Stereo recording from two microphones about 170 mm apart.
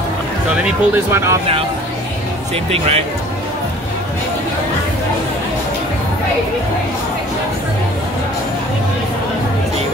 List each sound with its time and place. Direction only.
0.6 s speech: 15° right (ahead or behind)
2.5 s speech: 35° right (ahead or behind)